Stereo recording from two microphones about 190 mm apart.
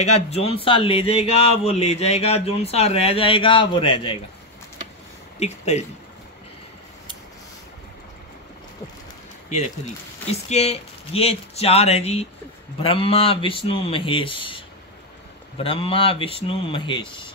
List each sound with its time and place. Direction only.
0.0 s speech: 35° left (ahead or behind)
5.4 s speech: 35° left (ahead or behind)
10.5 s speech: 35° left (ahead or behind)